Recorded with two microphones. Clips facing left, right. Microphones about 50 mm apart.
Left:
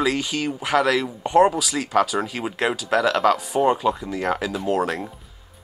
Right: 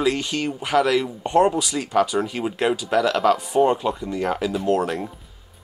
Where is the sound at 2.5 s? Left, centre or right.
Left.